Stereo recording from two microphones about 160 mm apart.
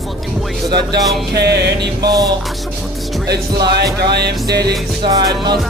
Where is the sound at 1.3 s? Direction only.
90° right.